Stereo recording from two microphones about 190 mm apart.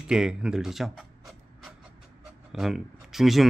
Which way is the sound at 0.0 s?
5° right (ahead or behind).